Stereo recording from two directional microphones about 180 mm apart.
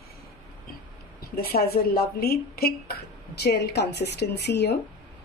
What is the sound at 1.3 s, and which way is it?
Speech, 55° left (ahead or behind).